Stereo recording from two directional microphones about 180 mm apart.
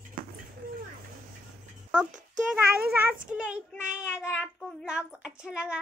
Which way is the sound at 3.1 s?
5° right (ahead or behind).